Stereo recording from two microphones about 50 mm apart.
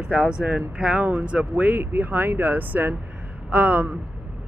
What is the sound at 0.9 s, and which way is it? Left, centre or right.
Speech, right.